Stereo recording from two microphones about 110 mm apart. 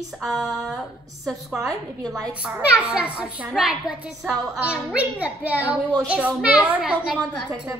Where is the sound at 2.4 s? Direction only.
10° right (ahead or behind).